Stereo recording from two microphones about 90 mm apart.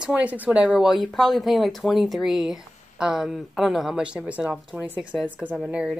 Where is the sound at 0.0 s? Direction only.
15° right (ahead or behind).